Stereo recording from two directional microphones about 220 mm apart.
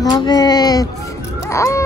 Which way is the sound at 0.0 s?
20° left (ahead or behind).